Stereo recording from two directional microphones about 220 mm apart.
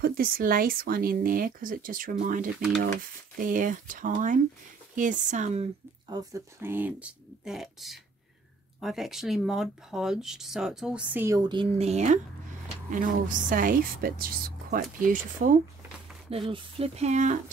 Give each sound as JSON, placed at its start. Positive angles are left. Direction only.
{"t": 0.0, "sound": "speech", "side_deg": -40}
{"t": 6.0, "sound": "speech", "side_deg": -15}
{"t": 16.3, "sound": "speech", "side_deg": -25}